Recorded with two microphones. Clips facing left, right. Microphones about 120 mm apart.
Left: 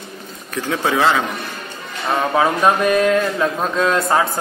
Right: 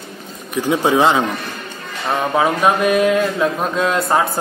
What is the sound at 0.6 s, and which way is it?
Speech, 20° right (ahead or behind).